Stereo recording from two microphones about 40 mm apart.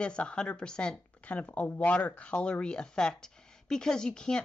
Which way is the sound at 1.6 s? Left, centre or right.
Left.